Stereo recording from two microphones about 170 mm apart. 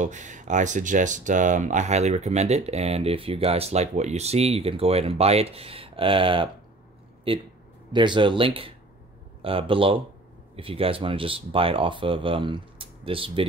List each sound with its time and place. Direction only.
0.0 s speech: 45° right (ahead or behind)